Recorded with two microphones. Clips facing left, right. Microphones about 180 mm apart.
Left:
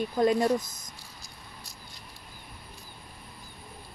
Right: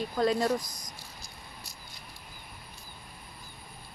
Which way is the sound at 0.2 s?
15° left (ahead or behind).